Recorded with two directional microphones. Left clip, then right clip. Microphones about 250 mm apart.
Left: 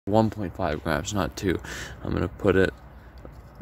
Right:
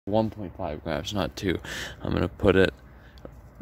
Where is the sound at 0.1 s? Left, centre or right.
Centre.